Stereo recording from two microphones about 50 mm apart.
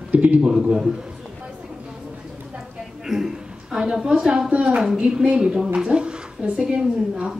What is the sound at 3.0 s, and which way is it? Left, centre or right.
A woman's voice, centre.